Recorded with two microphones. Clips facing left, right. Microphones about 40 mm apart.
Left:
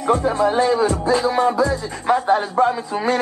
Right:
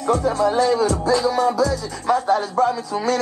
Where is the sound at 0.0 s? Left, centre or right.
Left.